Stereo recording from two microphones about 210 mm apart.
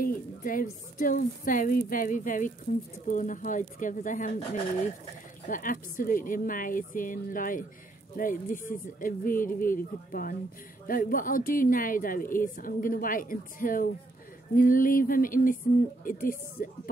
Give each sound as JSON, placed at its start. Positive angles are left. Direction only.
{"t": 0.0, "sound": "a woman's voice", "side_deg": 40}
{"t": 5.5, "sound": "a woman's voice", "side_deg": 40}